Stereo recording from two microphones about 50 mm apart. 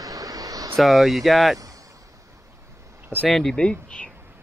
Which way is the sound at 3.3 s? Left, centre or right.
Centre.